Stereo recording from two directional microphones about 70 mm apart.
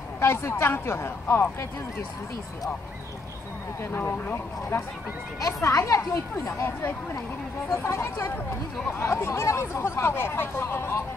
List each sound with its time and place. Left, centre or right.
0.2 s speech: left
3.9 s speech: left
5.4 s speech: left